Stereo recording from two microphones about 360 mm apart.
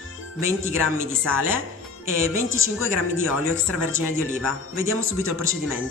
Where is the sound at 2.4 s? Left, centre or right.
Left.